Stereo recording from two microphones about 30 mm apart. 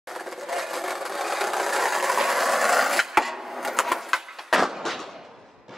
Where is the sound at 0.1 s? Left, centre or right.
Centre.